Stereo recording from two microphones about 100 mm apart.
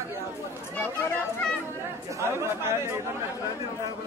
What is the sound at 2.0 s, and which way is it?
Speech, 30° right (ahead or behind).